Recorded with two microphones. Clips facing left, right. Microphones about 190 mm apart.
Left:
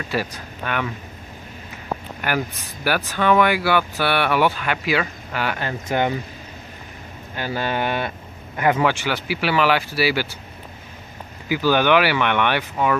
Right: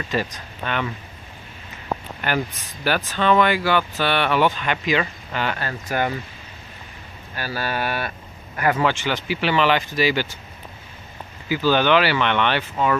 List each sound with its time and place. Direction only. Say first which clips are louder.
0.1 s speech: even; 10° left (ahead or behind)
2.2 s speech: even; 10° left (ahead or behind)
7.3 s speech: left 2 dB; 20° left (ahead or behind)
11.4 s speech: left 1 dB; 10° left (ahead or behind)